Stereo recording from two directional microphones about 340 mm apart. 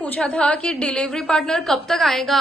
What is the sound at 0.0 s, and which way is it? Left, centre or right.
A woman's voice, centre.